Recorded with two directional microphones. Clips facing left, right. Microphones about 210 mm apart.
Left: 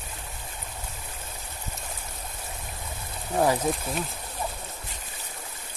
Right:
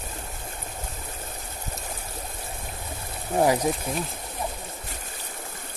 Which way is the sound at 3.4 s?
15° right (ahead or behind).